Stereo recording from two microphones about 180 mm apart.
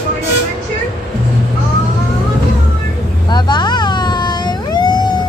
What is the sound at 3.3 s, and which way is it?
Vehicle, 25° left (ahead or behind).